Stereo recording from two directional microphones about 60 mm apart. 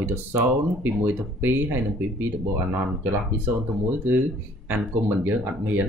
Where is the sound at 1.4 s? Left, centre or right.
Right.